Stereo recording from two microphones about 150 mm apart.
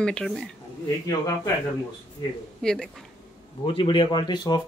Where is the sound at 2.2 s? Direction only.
30° left (ahead or behind).